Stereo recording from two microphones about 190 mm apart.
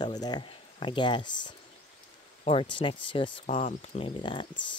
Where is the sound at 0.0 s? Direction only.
20° left (ahead or behind).